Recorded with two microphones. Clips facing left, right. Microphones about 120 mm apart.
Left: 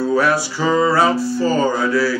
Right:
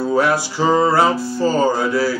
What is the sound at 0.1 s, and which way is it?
Music, 20° right (ahead or behind).